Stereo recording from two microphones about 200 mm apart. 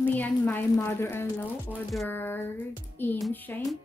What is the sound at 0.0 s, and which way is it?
A woman's voice, 10° left (ahead or behind).